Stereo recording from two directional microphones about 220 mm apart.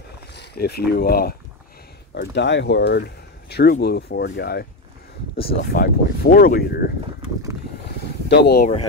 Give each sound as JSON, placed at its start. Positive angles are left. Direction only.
{"t": 0.3, "sound": "speech", "side_deg": 50}
{"t": 5.7, "sound": "speech", "side_deg": 45}
{"t": 8.3, "sound": "speech", "side_deg": 50}